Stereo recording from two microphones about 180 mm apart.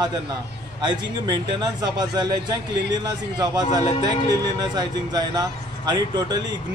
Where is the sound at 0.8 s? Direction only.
25° right (ahead or behind).